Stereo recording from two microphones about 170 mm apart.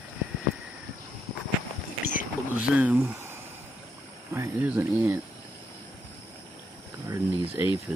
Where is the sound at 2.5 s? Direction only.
5° right (ahead or behind).